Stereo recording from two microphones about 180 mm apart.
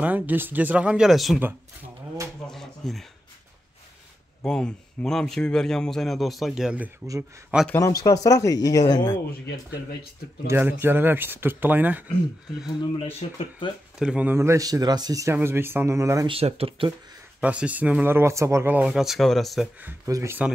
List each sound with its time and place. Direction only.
0.0 s speech: 10° right (ahead or behind)
2.4 s a sound: centre (ahead or behind)
4.5 s a man's voice: 5° left (ahead or behind)
8.0 s speech: 20° left (ahead or behind)
10.4 s speech: 15° right (ahead or behind)
12.9 s speech: 30° left (ahead or behind)
13.9 s speech: 5° right (ahead or behind)
16.3 s speech: 35° right (ahead or behind)
17.4 s speech: 5° right (ahead or behind)